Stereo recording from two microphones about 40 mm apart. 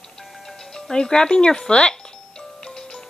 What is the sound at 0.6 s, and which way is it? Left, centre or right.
Music, centre.